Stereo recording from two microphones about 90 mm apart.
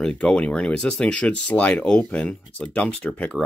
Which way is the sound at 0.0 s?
10° left (ahead or behind).